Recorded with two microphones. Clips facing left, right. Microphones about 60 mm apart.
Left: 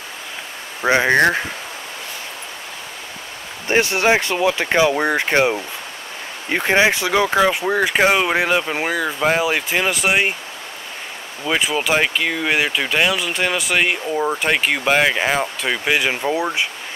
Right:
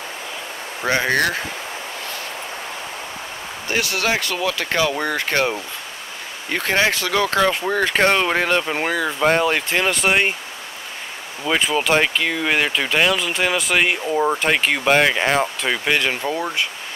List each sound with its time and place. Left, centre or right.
0.8 s speech: left
3.6 s speech: left; by 10.3 s centre
11.4 s speech: centre